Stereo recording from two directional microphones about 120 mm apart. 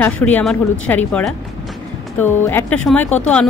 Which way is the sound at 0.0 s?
15° left (ahead or behind).